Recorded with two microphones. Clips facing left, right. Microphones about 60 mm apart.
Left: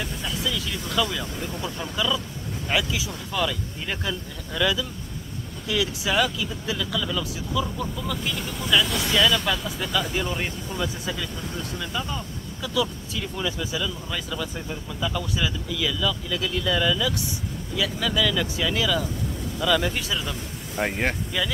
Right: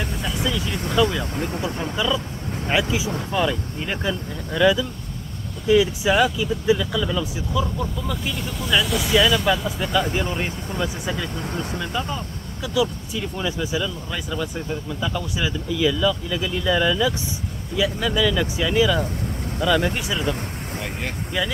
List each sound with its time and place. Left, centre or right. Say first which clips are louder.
0.4 s vehicle: right 4 dB; right
1.0 s speech: right 6 dB; centre
1.3 s speech: right 5 dB; right
1.6 s speech: right 1 dB; right
7.6 s speech: right 3 dB; centre
11.4 s speech: right 4 dB; right
11.8 s speech: right 3 dB; centre
20.2 s vehicle: right 6 dB; right